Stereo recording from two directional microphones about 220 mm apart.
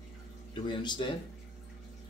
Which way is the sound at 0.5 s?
20° left (ahead or behind).